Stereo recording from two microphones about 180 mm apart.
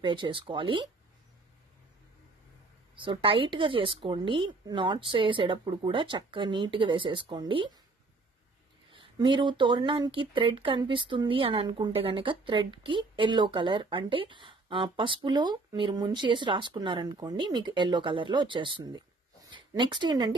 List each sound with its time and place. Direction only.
0.0 s speech: 25° right (ahead or behind)
3.0 s speech: 30° right (ahead or behind)
8.9 s speech: 25° right (ahead or behind)